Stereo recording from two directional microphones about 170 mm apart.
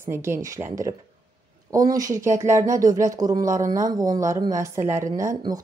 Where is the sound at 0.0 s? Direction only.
15° right (ahead or behind).